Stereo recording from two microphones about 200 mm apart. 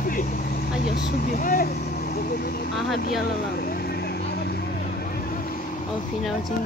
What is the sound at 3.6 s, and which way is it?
Vehicle, 50° left (ahead or behind).